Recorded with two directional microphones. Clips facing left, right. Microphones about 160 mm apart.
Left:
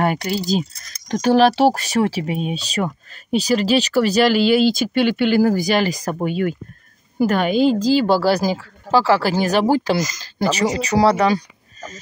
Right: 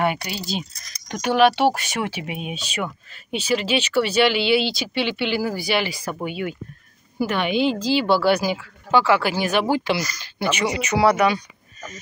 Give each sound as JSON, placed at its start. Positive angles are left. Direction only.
{"t": 0.0, "sound": "speech", "side_deg": 40}